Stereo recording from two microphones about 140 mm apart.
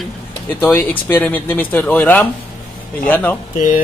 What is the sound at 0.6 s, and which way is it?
Speech, 15° left (ahead or behind).